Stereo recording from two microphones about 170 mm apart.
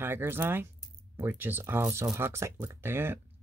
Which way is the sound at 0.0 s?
15° right (ahead or behind).